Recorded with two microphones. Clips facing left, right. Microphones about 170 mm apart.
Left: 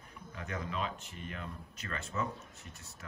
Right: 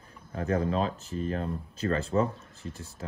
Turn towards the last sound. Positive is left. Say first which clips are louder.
# right 12 dB
turn(degrees=-30)  # may be behind; listen again after turning